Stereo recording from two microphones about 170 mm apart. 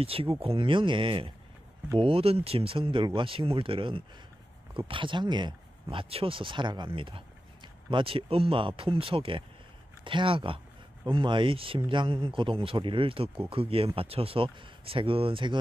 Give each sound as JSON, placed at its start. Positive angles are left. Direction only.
{"t": 0.0, "sound": "speech", "side_deg": -35}